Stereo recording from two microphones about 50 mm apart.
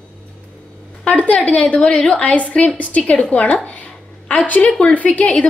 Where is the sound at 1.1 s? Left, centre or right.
Left.